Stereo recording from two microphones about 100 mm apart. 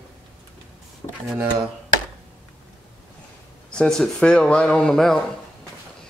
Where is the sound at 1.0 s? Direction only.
55° left (ahead or behind).